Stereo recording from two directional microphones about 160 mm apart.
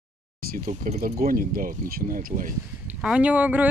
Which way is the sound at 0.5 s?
45° right (ahead or behind).